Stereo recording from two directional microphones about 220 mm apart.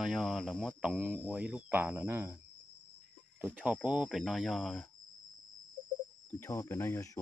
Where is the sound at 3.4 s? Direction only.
5° right (ahead or behind).